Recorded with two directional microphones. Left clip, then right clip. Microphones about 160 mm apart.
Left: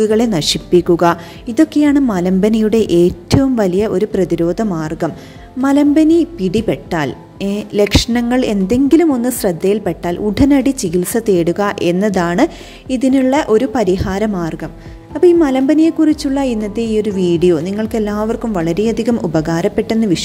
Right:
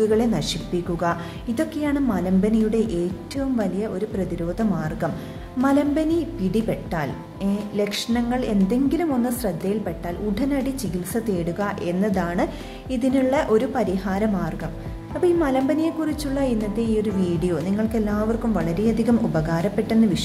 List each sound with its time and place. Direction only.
0.0 s a woman's voice: 50° left (ahead or behind)